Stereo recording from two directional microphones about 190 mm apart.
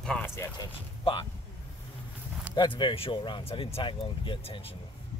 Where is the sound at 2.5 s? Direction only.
25° left (ahead or behind).